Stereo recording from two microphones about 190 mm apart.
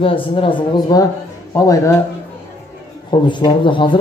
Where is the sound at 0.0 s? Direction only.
30° left (ahead or behind).